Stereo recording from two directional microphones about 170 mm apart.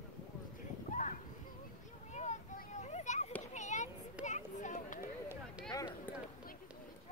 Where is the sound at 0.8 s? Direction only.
45° left (ahead or behind).